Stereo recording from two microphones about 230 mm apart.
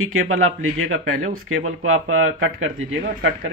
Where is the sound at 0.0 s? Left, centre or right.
Right.